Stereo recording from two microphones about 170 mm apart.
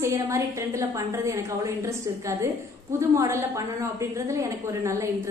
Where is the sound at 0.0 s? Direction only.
15° right (ahead or behind).